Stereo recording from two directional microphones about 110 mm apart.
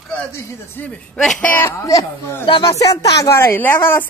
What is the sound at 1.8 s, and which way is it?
A woman's voice, 30° left (ahead or behind).